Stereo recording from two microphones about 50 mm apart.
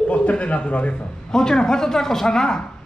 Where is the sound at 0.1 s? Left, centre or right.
Left.